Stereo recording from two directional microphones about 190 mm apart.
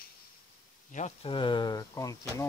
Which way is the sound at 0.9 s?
35° left (ahead or behind).